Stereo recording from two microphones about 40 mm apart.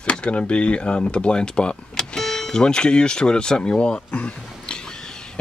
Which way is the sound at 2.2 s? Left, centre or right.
Centre.